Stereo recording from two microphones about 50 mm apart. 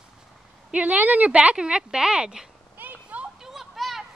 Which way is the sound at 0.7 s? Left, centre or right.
Right.